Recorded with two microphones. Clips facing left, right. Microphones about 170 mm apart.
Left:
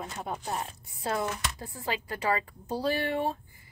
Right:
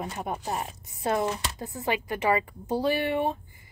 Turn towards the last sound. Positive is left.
turn(degrees=-15)  # may be behind; listen again after turning